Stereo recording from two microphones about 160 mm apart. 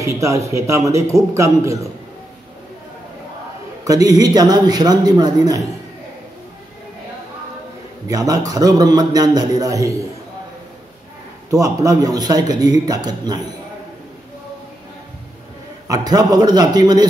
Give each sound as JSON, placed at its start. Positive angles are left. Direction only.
{"t": 0.0, "sound": "a man's voice", "side_deg": -20}
{"t": 3.8, "sound": "a man's voice", "side_deg": -20}
{"t": 8.1, "sound": "a man's voice", "side_deg": -20}
{"t": 11.5, "sound": "a man's voice", "side_deg": -20}
{"t": 15.9, "sound": "a man's voice", "side_deg": -25}